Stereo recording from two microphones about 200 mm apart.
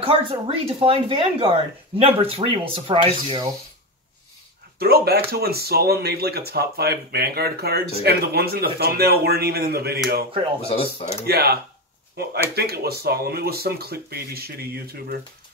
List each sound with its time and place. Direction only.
0.0 s speech: 25° right (ahead or behind)
4.7 s speech: 50° right (ahead or behind)
10.7 s speech: 30° left (ahead or behind)
11.2 s speech: 50° right (ahead or behind)